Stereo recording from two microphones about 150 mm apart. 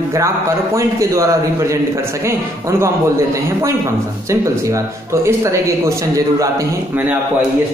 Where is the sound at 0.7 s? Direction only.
20° right (ahead or behind).